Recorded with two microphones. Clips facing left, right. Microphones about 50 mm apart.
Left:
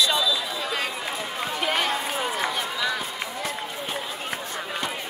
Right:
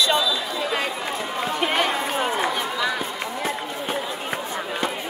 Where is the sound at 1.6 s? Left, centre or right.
Centre.